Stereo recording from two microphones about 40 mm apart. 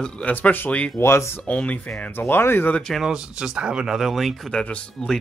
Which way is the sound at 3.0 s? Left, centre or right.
Centre.